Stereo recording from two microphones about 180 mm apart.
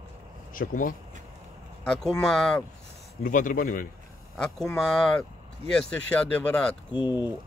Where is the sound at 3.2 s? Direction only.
50° left (ahead or behind).